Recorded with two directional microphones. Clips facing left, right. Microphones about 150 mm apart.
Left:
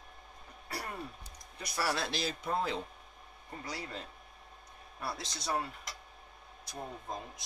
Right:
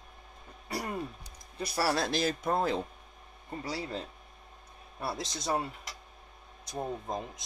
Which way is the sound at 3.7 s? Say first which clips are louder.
Right 6 dB; 30° right (ahead or behind).